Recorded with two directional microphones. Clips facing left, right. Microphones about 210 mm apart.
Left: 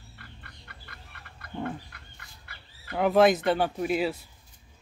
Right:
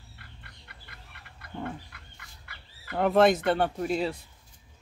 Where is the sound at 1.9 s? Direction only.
40° left (ahead or behind).